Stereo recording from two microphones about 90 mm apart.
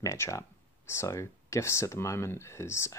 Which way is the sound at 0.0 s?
35° left (ahead or behind).